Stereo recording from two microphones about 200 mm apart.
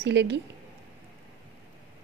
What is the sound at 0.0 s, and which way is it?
Speech, 60° right (ahead or behind).